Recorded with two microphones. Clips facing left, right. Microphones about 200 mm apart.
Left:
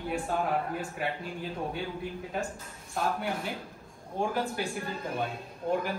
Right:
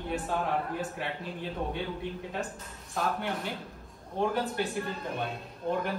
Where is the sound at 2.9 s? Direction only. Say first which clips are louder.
Left 1 dB; centre (ahead or behind).